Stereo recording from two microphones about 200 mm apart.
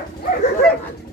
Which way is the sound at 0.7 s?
5° left (ahead or behind).